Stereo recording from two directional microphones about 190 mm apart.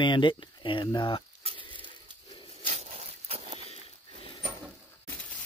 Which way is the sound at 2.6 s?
30° right (ahead or behind).